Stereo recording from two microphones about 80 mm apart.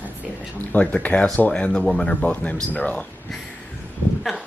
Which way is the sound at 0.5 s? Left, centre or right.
Centre.